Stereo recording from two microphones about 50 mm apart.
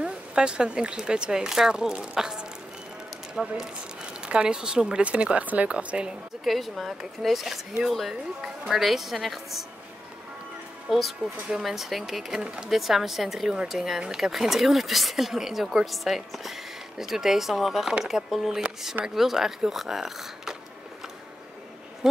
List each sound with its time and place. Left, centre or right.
0.0 s speech: centre
6.4 s speech: centre
10.9 s speech: centre
12.4 s speech: centre
12.6 s speech: centre